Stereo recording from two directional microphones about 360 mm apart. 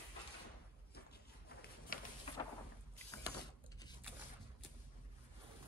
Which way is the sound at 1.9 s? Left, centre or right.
Left.